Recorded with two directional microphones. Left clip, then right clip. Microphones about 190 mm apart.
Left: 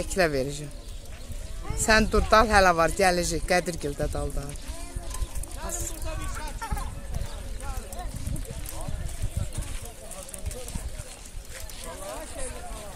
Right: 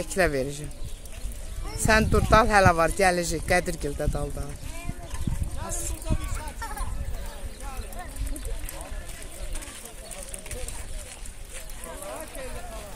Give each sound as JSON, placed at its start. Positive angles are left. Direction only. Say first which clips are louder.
{"t": 0.0, "sound": "speech", "louder": "even", "side_deg": 0}
{"t": 1.8, "sound": "speech", "louder": "even", "side_deg": 0}